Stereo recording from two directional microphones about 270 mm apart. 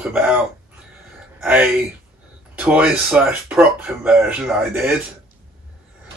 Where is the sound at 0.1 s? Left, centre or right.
Centre.